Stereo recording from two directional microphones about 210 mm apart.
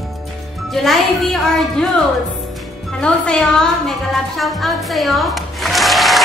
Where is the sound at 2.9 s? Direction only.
5° left (ahead or behind).